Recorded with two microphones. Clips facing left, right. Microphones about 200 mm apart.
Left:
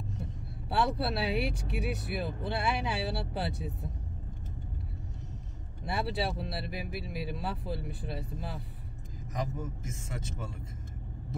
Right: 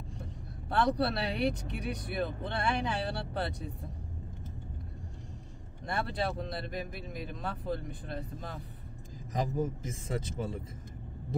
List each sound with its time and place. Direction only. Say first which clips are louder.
0.7 s speech: right 1 dB; 5° left (ahead or behind)
5.9 s speech: left 1 dB; 10° left (ahead or behind)
9.3 s a man's voice: right 5 dB; 30° right (ahead or behind)